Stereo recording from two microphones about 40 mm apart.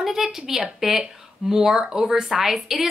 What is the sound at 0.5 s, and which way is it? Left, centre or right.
A woman's voice, centre.